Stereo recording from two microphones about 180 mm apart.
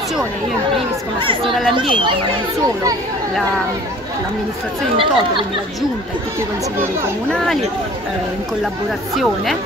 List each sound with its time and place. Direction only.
4.9 s speech: 30° right (ahead or behind)
9.1 s speech: centre (ahead or behind)